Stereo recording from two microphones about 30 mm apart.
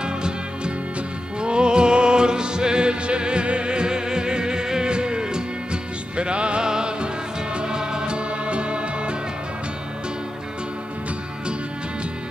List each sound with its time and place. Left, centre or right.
0.0 s music: right
6.1 s music: right